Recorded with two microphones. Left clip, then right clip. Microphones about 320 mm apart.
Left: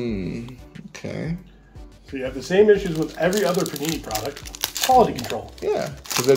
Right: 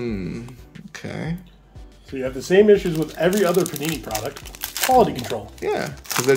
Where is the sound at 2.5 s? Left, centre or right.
Right.